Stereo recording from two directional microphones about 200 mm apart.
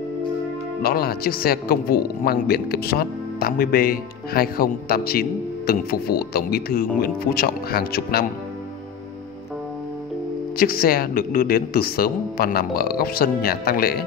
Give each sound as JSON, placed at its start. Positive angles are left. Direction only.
{"t": 0.8, "sound": "a man's voice", "side_deg": 50}
{"t": 10.6, "sound": "a man's voice", "side_deg": 45}